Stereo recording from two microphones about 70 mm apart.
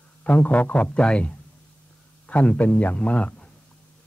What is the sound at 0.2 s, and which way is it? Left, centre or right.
A man's voice, left.